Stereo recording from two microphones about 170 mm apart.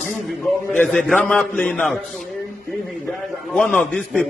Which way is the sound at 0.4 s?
Centre (ahead or behind).